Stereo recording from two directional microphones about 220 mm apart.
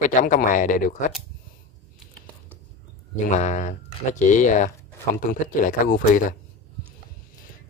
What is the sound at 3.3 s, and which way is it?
Speech, 35° left (ahead or behind).